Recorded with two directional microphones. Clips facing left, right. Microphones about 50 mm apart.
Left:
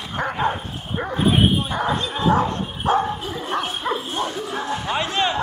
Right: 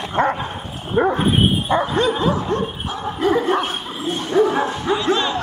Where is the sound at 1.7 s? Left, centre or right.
Right.